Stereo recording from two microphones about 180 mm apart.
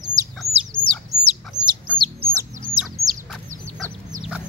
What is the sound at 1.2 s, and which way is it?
Chicken, 10° right (ahead or behind).